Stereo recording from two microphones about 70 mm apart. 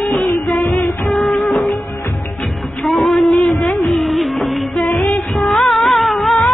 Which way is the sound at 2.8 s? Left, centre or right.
Centre.